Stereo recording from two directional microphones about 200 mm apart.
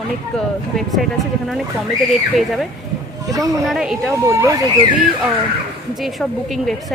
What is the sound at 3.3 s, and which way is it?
Speech, 15° right (ahead or behind).